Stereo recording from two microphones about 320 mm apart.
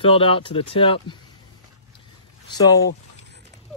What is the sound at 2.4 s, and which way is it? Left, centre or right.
Speech, centre.